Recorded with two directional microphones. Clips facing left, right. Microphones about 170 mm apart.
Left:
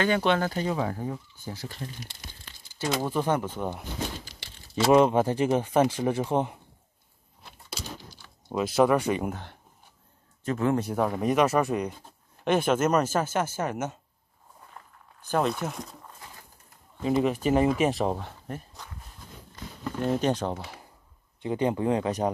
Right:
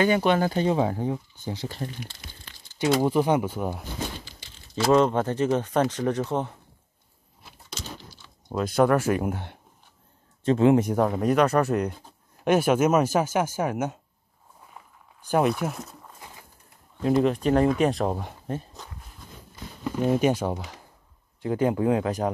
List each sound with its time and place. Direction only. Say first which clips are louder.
0.0 s speech: right 3 dB; 10° right (ahead or behind)
0.5 s speech: right 5 dB; 25° right (ahead or behind)
2.9 s speech: right 5 dB; 15° right (ahead or behind)
4.4 s crumpling: left 2 dB; 75° left (ahead or behind)
4.8 s speech: left 1 dB; 10° left (ahead or behind)
7.7 s a sound: even; 10° left (ahead or behind)
10.4 s speech: right 7 dB; 25° right (ahead or behind)
11.0 s speech: right 2 dB; centre (ahead or behind)
15.2 s speech: right 4 dB; 10° right (ahead or behind)
17.0 s speech: right 3 dB; 5° left (ahead or behind)
19.5 s a sound: right 4 dB; 10° right (ahead or behind)
20.5 s speech: right 2 dB; centre (ahead or behind)